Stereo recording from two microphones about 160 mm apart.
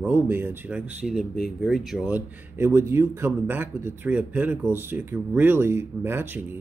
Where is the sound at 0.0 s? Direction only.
15° right (ahead or behind).